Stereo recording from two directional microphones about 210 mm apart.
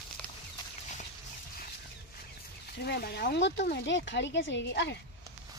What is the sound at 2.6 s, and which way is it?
Speech, 50° left (ahead or behind).